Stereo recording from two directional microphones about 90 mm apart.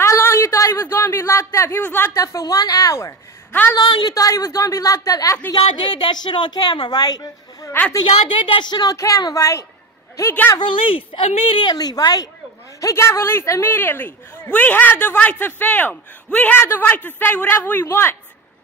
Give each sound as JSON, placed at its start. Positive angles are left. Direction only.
{"t": 0.0, "sound": "a sound", "side_deg": 30}
{"t": 1.8, "sound": "speech", "side_deg": 20}
{"t": 2.1, "sound": "a woman's voice", "side_deg": 40}
{"t": 3.7, "sound": "a woman's voice", "side_deg": 55}
{"t": 4.1, "sound": "a woman's voice", "side_deg": 35}
{"t": 5.6, "sound": "speech", "side_deg": 80}
{"t": 5.9, "sound": "a woman's voice", "side_deg": 55}
{"t": 8.0, "sound": "a woman's voice", "side_deg": 70}
{"t": 8.9, "sound": "a woman's voice", "side_deg": 40}
{"t": 10.6, "sound": "speech", "side_deg": 75}
{"t": 11.6, "sound": "a woman's voice", "side_deg": 50}
{"t": 12.8, "sound": "speech", "side_deg": 30}